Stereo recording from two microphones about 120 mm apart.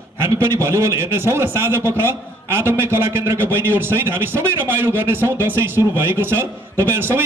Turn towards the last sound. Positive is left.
turn(degrees=-20)  # may be behind; listen again after turning